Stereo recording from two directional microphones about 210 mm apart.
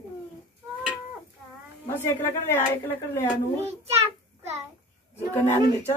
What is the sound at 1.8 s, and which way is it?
Speech, 10° left (ahead or behind).